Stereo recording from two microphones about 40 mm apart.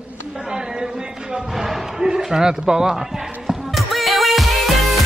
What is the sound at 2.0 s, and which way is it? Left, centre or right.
Speech, centre.